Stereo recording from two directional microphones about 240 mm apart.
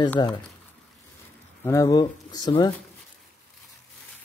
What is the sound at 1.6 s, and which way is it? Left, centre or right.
Speech, centre.